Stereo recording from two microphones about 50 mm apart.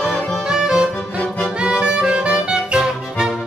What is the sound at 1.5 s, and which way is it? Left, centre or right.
Music, centre.